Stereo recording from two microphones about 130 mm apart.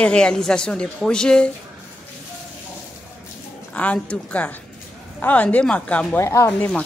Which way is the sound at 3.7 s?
10° left (ahead or behind).